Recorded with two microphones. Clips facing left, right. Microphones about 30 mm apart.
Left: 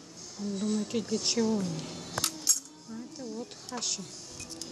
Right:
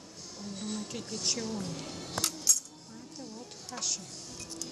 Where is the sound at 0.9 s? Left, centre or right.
Centre.